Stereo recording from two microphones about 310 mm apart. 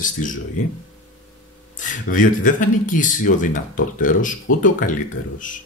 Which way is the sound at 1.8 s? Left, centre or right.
Left.